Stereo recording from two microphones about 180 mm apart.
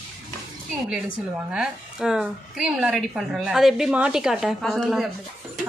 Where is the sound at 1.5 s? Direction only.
5° right (ahead or behind).